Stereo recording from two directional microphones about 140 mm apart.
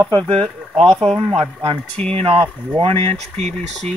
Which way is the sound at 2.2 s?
40° right (ahead or behind).